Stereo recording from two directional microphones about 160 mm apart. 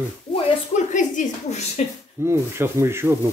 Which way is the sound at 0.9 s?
50° left (ahead or behind).